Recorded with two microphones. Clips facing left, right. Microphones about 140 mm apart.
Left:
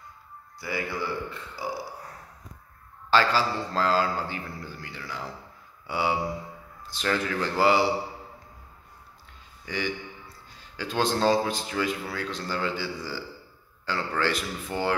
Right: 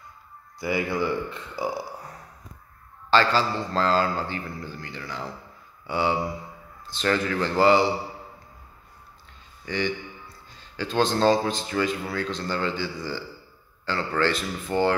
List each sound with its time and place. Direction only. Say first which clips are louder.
0.6 s speech: right 6 dB; 15° right (ahead or behind)
3.1 s speech: right 2 dB; 5° left (ahead or behind)
5.9 s a sound: right 2 dB; 10° left (ahead or behind)
6.9 s speech: right 3 dB; 5° left (ahead or behind)
9.7 s speech: right 3 dB; 10° left (ahead or behind)